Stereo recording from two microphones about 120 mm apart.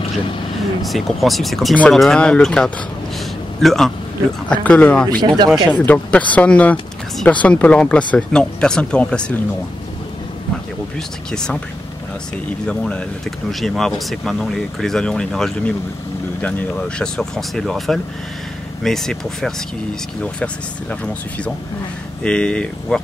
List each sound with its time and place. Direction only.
0.2 s speech: 45° left (ahead or behind)
0.8 s speech: centre (ahead or behind)
11.0 s speech: 5° left (ahead or behind)
12.6 s speech: 10° left (ahead or behind)
22.2 s speech: 5° left (ahead or behind)